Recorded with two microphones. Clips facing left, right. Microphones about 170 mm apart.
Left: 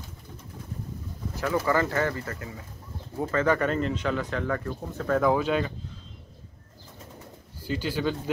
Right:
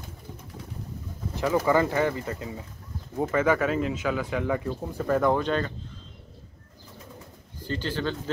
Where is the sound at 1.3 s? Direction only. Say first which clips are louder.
Right 3 dB; 15° right (ahead or behind); by 5.7 s 5° left (ahead or behind).